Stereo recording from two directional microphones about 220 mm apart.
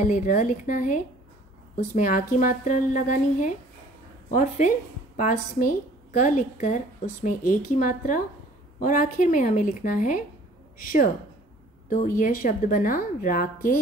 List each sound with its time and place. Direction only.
0.0 s a woman's voice: 35° left (ahead or behind)